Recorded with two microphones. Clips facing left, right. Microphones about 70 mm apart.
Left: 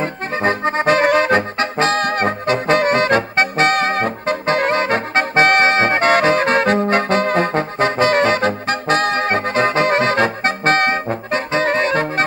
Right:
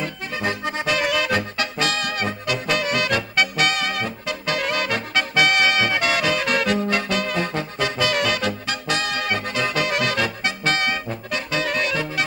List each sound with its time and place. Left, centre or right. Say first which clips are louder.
0.0 s accordion: left 7 dB; left